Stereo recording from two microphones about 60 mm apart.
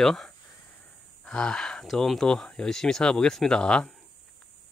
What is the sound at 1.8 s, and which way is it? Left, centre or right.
Speech, centre.